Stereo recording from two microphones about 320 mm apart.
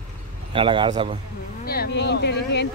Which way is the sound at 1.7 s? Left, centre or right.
Left.